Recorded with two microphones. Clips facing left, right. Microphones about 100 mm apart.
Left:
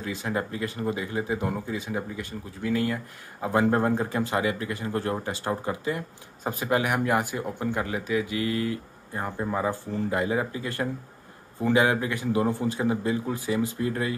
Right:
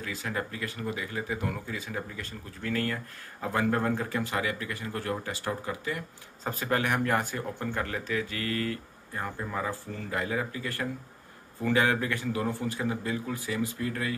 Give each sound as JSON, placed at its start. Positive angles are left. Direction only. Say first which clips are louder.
{"t": 0.0, "sound": "speech", "louder": "left 4 dB", "side_deg": 25}
{"t": 6.4, "sound": "speech", "louder": "left 3 dB", "side_deg": 15}